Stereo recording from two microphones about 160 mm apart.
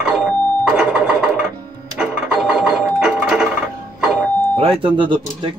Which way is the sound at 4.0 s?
5° right (ahead or behind).